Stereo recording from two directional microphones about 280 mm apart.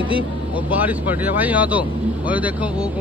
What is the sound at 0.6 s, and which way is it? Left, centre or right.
Speech, centre.